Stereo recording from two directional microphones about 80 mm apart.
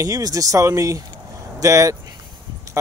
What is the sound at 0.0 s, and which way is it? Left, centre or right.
Speech, right.